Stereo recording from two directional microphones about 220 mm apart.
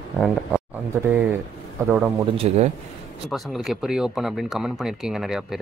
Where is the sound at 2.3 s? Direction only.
25° right (ahead or behind).